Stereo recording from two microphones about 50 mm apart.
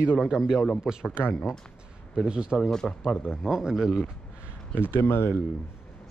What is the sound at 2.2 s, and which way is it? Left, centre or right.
Speech, centre.